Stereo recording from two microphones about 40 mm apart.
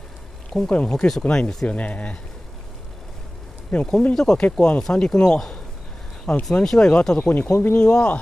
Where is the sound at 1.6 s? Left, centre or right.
Left.